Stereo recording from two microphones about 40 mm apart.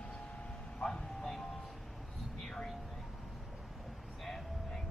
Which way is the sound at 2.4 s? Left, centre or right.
Centre.